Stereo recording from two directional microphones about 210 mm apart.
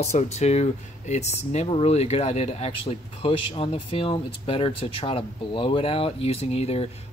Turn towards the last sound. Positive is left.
turn(degrees=30)  # may be behind; listen again after turning